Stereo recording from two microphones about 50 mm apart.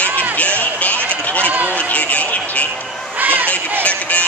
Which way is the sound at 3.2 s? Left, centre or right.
Right.